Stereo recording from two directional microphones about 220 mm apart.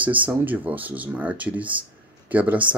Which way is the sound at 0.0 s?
5° right (ahead or behind).